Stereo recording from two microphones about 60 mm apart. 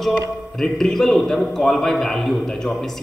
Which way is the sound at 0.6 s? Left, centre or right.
Centre.